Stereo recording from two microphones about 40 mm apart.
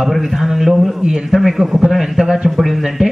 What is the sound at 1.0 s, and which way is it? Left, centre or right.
Speech, centre.